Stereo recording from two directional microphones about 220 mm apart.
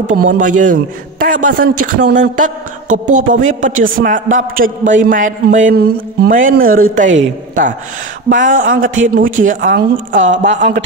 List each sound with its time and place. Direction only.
0.1 s speech: 40° right (ahead or behind)